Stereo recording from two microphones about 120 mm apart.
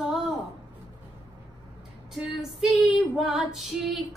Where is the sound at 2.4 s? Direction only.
5° right (ahead or behind).